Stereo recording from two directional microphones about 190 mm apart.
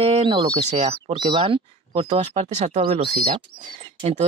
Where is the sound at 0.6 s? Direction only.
35° right (ahead or behind).